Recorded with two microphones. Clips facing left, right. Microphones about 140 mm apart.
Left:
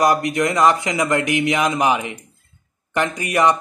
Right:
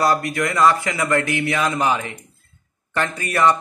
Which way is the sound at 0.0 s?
20° left (ahead or behind).